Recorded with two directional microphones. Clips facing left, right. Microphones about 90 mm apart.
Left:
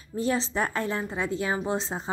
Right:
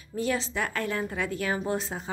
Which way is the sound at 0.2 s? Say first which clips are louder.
Left 2 dB; 30° left (ahead or behind).